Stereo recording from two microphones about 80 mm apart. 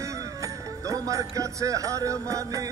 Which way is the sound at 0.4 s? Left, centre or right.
Right.